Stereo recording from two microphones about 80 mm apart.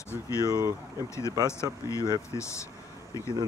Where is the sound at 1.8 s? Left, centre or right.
Left.